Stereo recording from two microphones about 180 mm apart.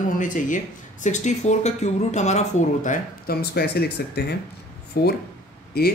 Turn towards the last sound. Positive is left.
turn(degrees=60)  # may be behind; listen again after turning